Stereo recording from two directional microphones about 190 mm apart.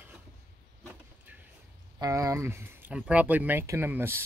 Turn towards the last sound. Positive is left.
turn(degrees=-10)  # may be behind; listen again after turning